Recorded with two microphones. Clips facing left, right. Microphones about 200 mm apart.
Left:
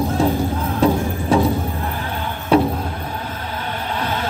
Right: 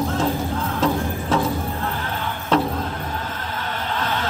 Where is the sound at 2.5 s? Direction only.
15° left (ahead or behind).